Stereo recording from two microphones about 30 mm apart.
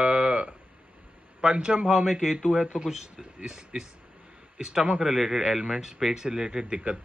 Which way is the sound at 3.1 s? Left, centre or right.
Right.